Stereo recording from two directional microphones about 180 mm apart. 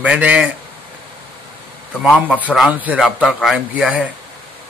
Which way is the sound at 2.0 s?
5° right (ahead or behind).